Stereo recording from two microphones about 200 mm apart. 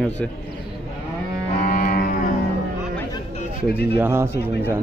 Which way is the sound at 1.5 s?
45° left (ahead or behind).